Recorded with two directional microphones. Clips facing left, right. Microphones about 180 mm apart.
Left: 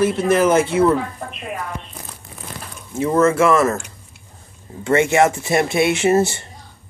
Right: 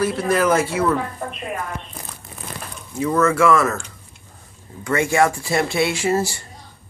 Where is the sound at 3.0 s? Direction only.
25° left (ahead or behind).